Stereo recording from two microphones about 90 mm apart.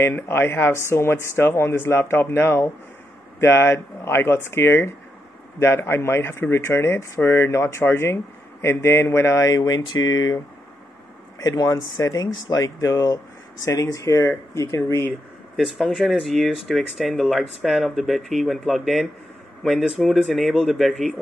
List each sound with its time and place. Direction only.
0.0 s speech: 25° left (ahead or behind); by 10.4 s 50° left (ahead or behind)
11.4 s speech: 45° left (ahead or behind)
15.5 s speech: centre (ahead or behind)